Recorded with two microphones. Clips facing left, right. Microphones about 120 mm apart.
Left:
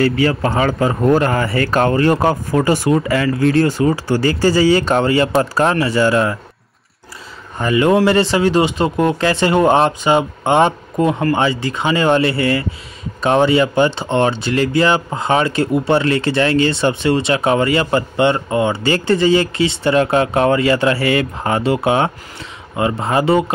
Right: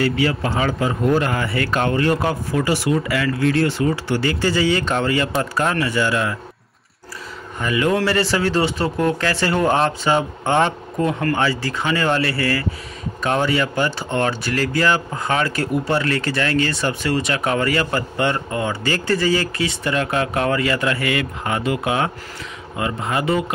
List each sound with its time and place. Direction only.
0.0 s speech: 45° left (ahead or behind)
7.5 s speech: 30° left (ahead or behind)